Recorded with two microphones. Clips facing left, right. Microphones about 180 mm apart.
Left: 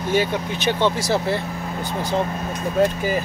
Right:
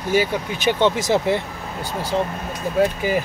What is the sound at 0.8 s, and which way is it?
Speech, 20° right (ahead or behind).